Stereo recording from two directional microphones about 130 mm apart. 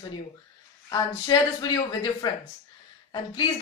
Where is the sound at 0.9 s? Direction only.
30° left (ahead or behind).